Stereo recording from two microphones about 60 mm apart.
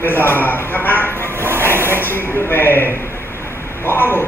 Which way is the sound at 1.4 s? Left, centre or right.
Right.